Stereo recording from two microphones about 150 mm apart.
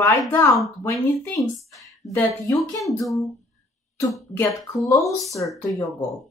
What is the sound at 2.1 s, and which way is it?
Speech, 20° left (ahead or behind).